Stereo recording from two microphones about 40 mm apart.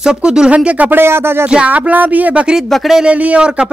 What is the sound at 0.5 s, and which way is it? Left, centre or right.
Speech, right.